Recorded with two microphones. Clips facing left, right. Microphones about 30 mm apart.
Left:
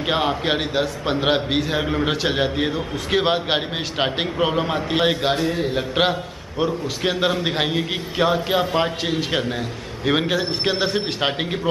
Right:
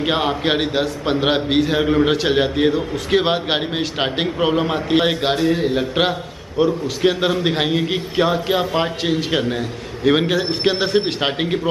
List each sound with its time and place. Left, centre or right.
0.0 s a man's voice: centre
5.4 s a man's voice: centre
5.8 s a man's voice: centre